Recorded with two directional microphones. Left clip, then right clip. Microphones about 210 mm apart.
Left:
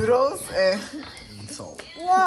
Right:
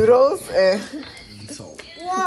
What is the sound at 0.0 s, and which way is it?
Speech, 10° left (ahead or behind).